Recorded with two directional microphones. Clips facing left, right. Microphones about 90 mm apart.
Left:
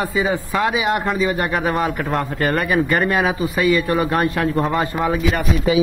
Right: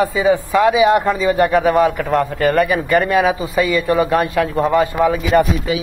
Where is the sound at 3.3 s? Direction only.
25° right (ahead or behind).